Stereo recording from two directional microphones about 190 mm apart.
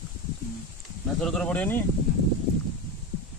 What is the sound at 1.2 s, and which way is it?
Speech, 5° left (ahead or behind).